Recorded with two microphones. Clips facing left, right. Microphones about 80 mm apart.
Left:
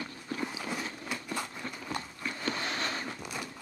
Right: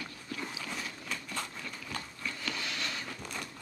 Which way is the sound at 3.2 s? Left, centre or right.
Centre.